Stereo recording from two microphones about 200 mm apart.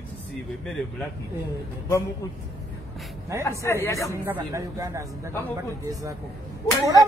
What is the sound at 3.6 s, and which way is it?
Speech, 15° left (ahead or behind).